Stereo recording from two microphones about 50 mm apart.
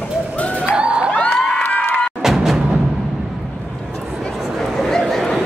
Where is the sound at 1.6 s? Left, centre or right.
Left.